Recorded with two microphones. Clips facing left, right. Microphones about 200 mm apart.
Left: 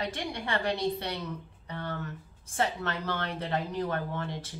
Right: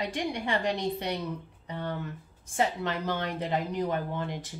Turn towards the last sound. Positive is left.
turn(degrees=-15)  # may be behind; listen again after turning